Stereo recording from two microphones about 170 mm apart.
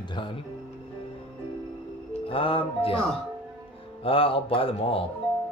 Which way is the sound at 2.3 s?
30° left (ahead or behind).